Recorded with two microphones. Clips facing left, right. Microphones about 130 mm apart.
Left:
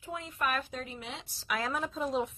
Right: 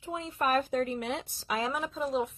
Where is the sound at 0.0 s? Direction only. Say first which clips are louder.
Right 3 dB; 25° right (ahead or behind); by 1.2 s 60° right (ahead or behind).